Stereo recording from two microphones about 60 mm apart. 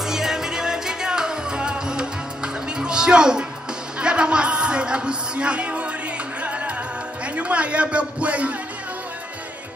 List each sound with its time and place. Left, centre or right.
0.0 s music: centre
4.0 s speech: centre
6.4 s music: right
7.3 s a man's voice: right